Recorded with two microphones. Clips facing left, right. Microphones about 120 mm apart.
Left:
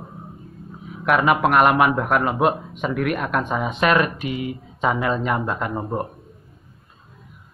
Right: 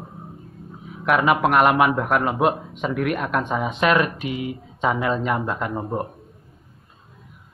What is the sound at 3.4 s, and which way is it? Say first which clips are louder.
Speech: even; 10° left (ahead or behind).